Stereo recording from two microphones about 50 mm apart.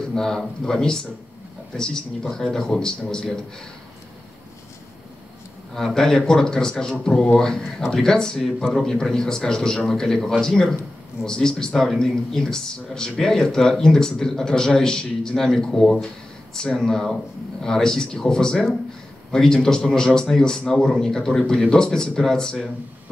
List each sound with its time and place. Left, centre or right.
0.0 s a man's voice: centre
5.9 s a man's voice: centre